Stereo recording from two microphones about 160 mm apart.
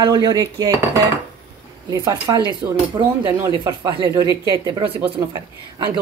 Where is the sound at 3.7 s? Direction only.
30° right (ahead or behind).